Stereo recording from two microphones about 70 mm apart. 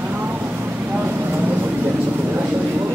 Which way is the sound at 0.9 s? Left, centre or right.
Right.